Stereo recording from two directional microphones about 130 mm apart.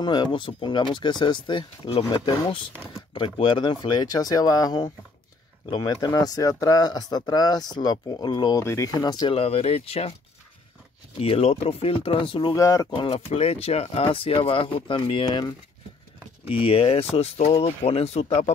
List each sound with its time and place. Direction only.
0.0 s speech: 35° left (ahead or behind)
9.3 s speech: 50° left (ahead or behind)
11.1 s speech: 50° left (ahead or behind)
12.5 s speech: 25° left (ahead or behind)
12.9 s speech: 40° left (ahead or behind)
13.3 s speech: 50° left (ahead or behind)
16.6 s speech: 50° left (ahead or behind)